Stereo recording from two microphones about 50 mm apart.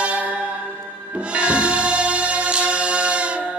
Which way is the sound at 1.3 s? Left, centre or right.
Right.